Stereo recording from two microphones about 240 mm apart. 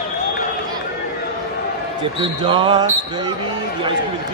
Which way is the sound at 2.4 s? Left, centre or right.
Right.